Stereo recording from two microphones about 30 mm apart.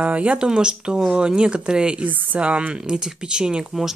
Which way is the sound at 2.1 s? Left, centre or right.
Right.